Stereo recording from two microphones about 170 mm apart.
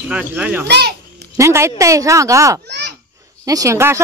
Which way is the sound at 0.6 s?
75° right (ahead or behind).